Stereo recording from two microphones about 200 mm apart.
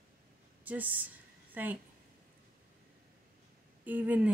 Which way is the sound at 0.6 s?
10° right (ahead or behind).